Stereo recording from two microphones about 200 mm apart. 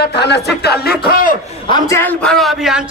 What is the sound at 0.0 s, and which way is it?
A woman's voice, 55° left (ahead or behind).